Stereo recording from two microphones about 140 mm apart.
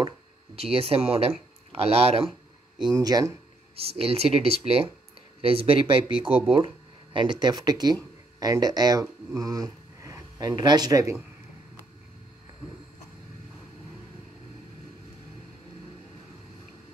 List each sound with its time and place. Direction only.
0.6 s speech: 45° right (ahead or behind)
2.9 s speech: 25° right (ahead or behind)
4.0 s speech: 45° right (ahead or behind); by 11.1 s 25° right (ahead or behind)